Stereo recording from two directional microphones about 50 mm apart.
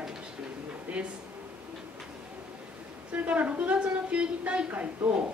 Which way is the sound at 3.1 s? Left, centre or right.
Right.